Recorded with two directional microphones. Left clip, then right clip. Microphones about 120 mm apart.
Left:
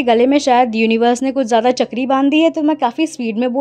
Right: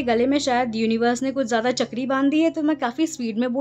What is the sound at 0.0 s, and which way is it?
A woman's voice, 60° left (ahead or behind).